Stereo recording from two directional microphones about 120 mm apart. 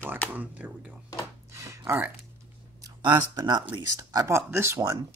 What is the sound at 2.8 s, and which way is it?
Speech, 35° right (ahead or behind).